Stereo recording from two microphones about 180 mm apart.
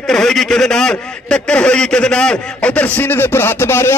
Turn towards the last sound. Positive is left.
turn(degrees=15)  # may be behind; listen again after turning